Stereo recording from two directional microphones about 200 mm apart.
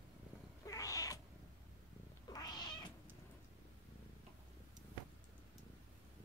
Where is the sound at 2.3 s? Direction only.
20° left (ahead or behind).